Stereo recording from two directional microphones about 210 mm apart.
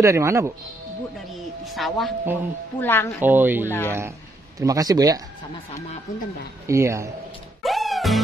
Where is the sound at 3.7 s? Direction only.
10° left (ahead or behind).